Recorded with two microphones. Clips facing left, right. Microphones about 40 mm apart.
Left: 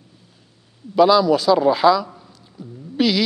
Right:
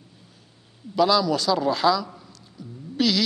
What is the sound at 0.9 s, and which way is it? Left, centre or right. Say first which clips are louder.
Speech: left 6 dB; centre.